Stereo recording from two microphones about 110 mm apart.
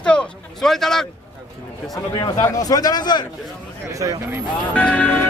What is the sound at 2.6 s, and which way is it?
Speech, 35° left (ahead or behind).